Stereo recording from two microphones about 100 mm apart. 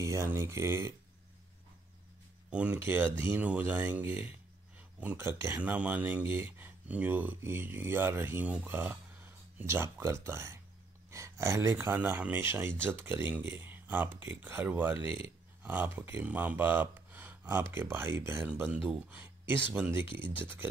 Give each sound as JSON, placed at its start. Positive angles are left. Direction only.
{"t": 0.0, "sound": "speech", "side_deg": -30}
{"t": 2.5, "sound": "speech", "side_deg": -15}
{"t": 5.6, "sound": "speech", "side_deg": -15}
{"t": 18.7, "sound": "speech", "side_deg": -10}